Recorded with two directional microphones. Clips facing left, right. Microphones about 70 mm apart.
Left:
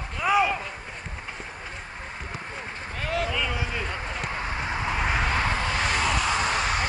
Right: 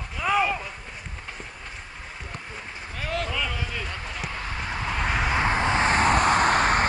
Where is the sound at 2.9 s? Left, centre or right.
Centre.